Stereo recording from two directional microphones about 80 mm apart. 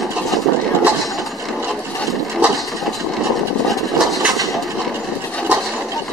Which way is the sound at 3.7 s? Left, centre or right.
Centre.